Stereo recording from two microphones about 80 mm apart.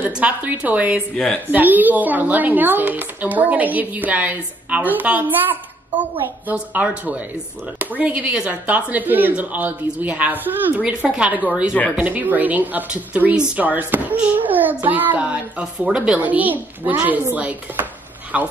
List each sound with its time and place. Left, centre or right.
0.1 s speech: centre
1.1 s speech: centre
1.5 s a woman's voice: right
16.2 s a woman's voice: right